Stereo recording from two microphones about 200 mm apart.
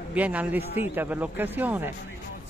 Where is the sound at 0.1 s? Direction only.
5° right (ahead or behind).